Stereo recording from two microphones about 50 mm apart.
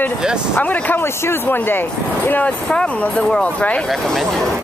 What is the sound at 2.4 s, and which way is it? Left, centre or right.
Speech, left.